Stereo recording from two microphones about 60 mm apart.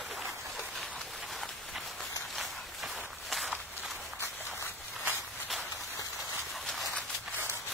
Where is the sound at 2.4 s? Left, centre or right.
Centre.